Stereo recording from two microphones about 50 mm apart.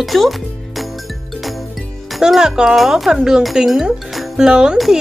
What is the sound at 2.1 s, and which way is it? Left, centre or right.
Speech, centre.